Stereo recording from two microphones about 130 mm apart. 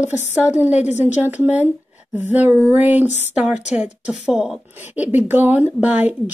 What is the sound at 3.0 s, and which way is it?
Speech, 60° left (ahead or behind).